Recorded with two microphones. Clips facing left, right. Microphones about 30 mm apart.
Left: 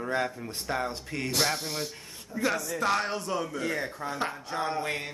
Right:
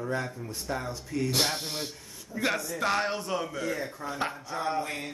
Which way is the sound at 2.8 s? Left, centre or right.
Centre.